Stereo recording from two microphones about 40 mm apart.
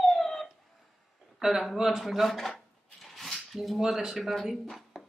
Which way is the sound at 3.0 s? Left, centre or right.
Centre.